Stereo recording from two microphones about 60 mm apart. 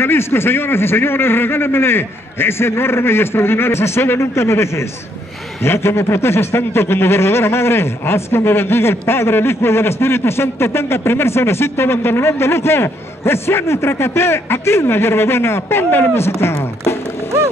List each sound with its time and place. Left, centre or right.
0.0 s a man's voice: left